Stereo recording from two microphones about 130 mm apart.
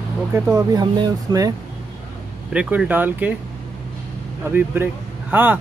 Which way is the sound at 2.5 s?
10° right (ahead or behind).